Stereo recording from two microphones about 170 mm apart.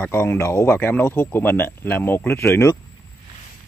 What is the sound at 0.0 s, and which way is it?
Speech, 15° left (ahead or behind).